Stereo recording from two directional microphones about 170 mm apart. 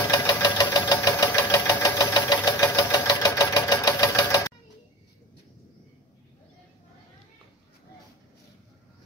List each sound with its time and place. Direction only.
0.1 s engine: 20° left (ahead or behind)